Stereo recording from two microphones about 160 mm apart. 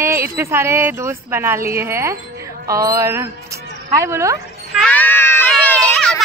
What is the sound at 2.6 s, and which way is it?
Mantra, 20° right (ahead or behind).